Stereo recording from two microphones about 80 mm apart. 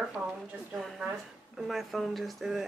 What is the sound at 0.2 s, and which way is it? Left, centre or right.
Speech, centre.